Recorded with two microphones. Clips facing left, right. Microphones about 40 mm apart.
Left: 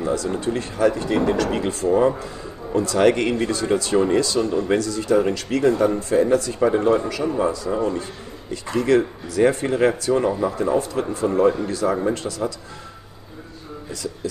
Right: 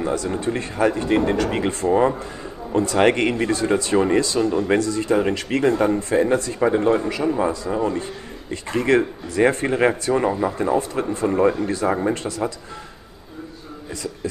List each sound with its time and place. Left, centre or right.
0.0 s a sound: right
0.4 s speech: right
7.2 s speech: centre
8.5 s speech: right